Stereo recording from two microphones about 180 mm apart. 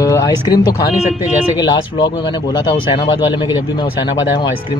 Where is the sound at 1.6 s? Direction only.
25° left (ahead or behind).